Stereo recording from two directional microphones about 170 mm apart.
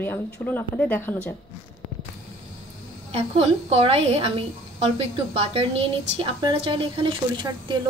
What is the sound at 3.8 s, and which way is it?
A woman's voice, 35° right (ahead or behind).